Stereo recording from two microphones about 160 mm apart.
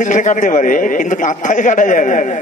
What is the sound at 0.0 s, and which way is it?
A man's voice, 50° left (ahead or behind).